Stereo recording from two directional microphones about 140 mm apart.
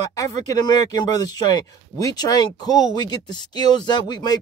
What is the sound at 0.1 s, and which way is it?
Speech, 30° left (ahead or behind).